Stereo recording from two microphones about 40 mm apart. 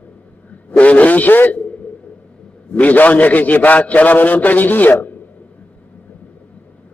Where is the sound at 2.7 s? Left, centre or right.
Left.